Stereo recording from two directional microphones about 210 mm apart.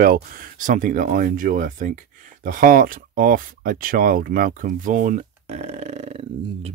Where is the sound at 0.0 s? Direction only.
45° right (ahead or behind).